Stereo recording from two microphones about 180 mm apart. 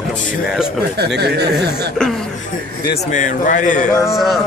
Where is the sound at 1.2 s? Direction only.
65° right (ahead or behind).